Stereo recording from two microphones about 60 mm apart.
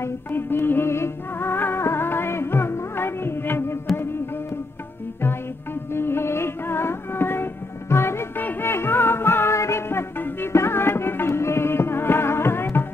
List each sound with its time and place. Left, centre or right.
0.0 s music: left
5.9 s music: left
8.4 s music: left
8.6 s music: left